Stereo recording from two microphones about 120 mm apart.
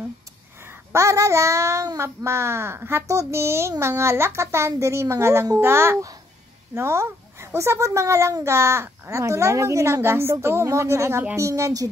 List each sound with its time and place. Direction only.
0.9 s speech: 25° right (ahead or behind)